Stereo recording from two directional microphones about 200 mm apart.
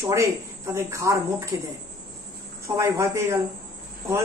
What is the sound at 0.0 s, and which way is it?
A woman's voice, 15° right (ahead or behind).